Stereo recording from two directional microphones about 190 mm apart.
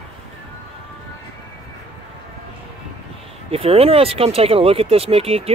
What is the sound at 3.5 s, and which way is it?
Speech, 30° right (ahead or behind).